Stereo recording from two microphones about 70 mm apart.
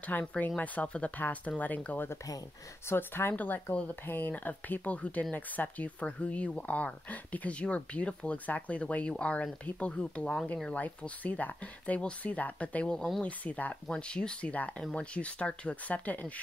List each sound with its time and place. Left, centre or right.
0.0 s speech: centre
2.9 s speech: left; by 13.2 s centre
13.2 s speech: left